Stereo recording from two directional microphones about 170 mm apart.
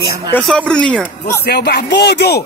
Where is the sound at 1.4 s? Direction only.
70° left (ahead or behind).